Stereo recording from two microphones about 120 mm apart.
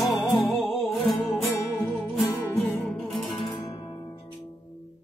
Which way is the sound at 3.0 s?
Centre (ahead or behind).